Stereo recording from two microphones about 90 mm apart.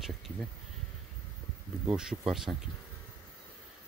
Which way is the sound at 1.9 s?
10° right (ahead or behind).